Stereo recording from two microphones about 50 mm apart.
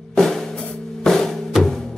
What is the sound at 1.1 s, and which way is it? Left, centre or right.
Music, centre.